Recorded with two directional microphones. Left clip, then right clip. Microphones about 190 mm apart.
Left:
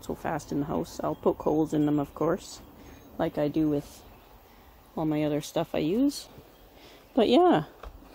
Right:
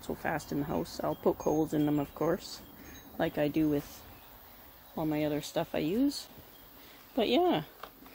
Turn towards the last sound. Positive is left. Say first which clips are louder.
# left 7 dB
turn(degrees=35)  # may be behind; listen again after turning